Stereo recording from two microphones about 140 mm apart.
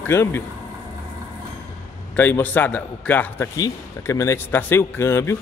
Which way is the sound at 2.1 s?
15° left (ahead or behind).